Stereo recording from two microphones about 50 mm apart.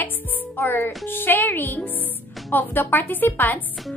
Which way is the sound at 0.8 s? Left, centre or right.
Left.